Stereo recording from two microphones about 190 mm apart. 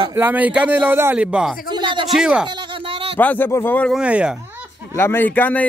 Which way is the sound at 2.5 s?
25° right (ahead or behind).